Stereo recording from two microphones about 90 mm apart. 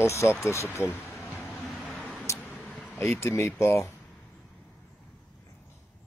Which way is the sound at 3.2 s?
30° left (ahead or behind).